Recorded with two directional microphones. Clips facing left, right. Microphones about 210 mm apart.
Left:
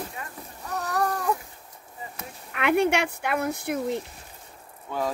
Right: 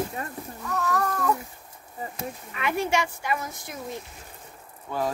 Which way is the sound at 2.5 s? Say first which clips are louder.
Left 5 dB; 65° left (ahead or behind).